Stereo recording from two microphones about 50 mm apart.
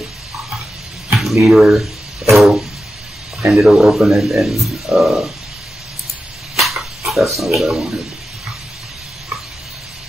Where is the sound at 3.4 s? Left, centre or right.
Centre.